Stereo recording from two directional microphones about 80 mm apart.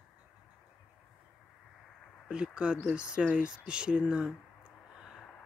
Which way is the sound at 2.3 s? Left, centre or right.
Centre.